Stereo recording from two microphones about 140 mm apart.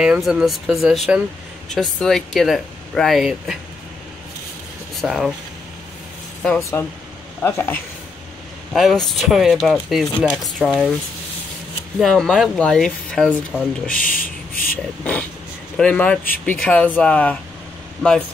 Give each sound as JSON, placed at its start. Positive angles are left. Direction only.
{"t": 0.0, "sound": "speech", "side_deg": -5}
{"t": 5.0, "sound": "speech", "side_deg": -5}
{"t": 6.6, "sound": "speech", "side_deg": 20}
{"t": 8.7, "sound": "speech", "side_deg": 0}
{"t": 12.0, "sound": "speech", "side_deg": 5}
{"t": 13.5, "sound": "speech", "side_deg": -5}
{"t": 13.8, "sound": "speech", "side_deg": 80}
{"t": 15.8, "sound": "speech", "side_deg": 10}